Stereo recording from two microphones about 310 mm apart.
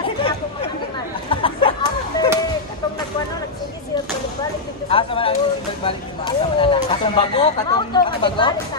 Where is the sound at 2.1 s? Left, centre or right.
Centre.